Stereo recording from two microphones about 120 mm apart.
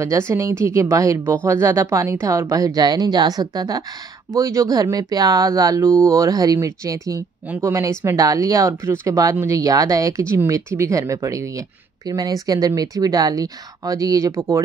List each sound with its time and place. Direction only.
0.0 s speech: 25° right (ahead or behind)
5.9 s speech: 5° left (ahead or behind)
6.1 s speech: 30° right (ahead or behind)